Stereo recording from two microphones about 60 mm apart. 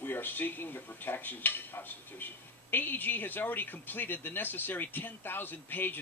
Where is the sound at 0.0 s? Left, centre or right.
Left.